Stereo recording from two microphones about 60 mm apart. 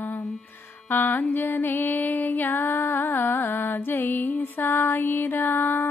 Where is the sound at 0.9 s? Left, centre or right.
Left.